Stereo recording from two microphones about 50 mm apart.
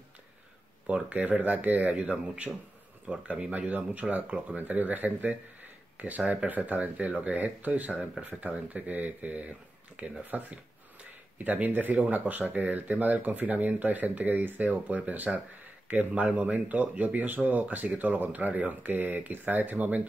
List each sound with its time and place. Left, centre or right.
0.8 s speech: right
11.3 s speech: right